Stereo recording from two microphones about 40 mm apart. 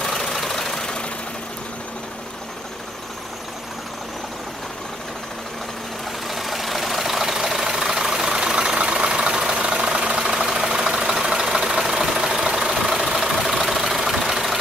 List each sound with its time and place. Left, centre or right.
0.0 s vehicle: centre
6.2 s vehicle: centre